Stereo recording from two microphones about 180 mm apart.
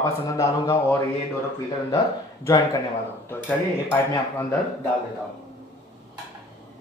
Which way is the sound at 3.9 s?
15° left (ahead or behind).